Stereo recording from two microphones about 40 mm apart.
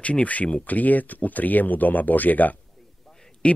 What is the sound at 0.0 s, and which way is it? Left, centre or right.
Speech, left.